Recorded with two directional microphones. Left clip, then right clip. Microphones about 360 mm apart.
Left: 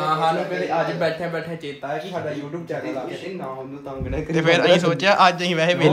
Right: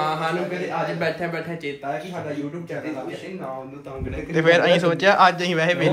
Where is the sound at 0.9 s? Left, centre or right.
Centre.